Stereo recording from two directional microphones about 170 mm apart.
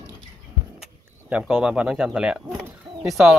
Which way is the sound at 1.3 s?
5° right (ahead or behind).